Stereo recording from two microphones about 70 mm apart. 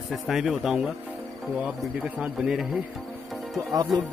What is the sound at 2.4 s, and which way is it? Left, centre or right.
Speech, centre.